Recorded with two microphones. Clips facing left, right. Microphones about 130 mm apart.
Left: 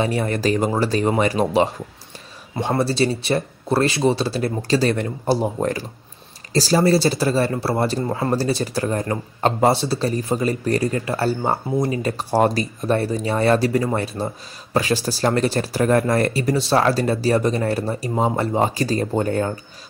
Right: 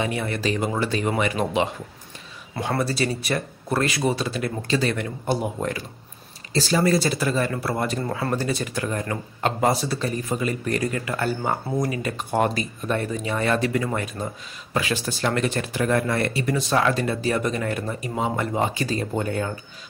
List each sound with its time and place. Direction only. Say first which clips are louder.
0.0 s speech: left 5 dB; 40° left (ahead or behind)
2.8 s speech: left 6 dB; 30° left (ahead or behind)